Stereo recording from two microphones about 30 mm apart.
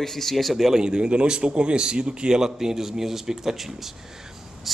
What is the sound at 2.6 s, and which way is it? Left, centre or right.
Speech, centre.